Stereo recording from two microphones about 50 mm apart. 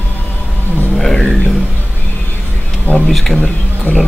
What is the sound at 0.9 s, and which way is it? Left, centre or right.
Speech, centre.